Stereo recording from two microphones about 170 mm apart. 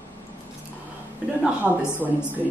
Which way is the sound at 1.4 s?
5° right (ahead or behind).